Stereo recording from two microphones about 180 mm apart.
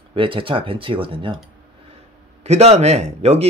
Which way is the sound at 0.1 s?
30° right (ahead or behind).